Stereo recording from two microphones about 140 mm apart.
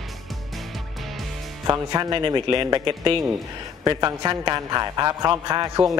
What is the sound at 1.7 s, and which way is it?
A man's voice, 25° right (ahead or behind).